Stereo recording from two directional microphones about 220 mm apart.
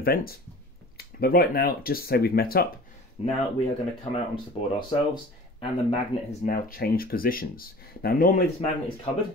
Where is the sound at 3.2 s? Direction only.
30° left (ahead or behind).